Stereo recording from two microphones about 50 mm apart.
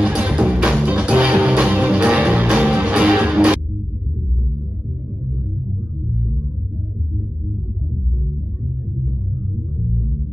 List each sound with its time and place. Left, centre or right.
0.0 s music: right